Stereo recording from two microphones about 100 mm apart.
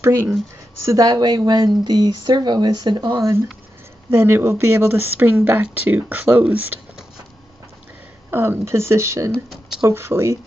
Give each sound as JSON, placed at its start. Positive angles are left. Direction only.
{"t": 0.0, "sound": "speech", "side_deg": -25}
{"t": 0.8, "sound": "speech", "side_deg": -35}
{"t": 3.2, "sound": "speech", "side_deg": -30}
{"t": 8.3, "sound": "speech", "side_deg": -20}